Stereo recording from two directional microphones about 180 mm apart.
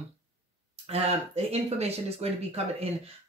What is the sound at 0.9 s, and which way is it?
Speech, 35° right (ahead or behind).